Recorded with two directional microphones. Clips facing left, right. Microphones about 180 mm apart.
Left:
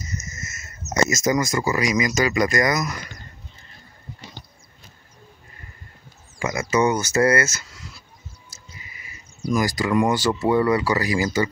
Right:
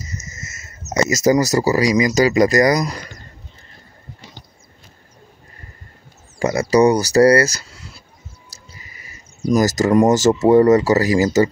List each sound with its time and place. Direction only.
0.0 s a sound: 30° right (ahead or behind)
1.1 s speech: 35° right (ahead or behind)
6.4 s speech: 35° right (ahead or behind)
8.5 s music: 40° right (ahead or behind)
9.5 s speech: 40° right (ahead or behind)